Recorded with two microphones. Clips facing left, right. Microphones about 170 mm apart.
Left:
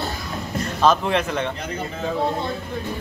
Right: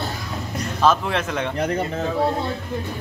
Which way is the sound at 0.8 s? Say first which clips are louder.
Left 1 dB; centre (ahead or behind).